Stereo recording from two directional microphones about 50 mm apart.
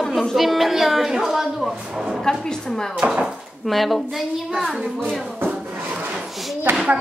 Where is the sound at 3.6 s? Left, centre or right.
Centre.